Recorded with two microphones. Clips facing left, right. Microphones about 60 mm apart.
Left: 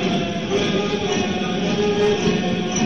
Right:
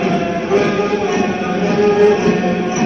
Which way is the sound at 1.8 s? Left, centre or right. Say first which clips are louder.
Right 8 dB; right.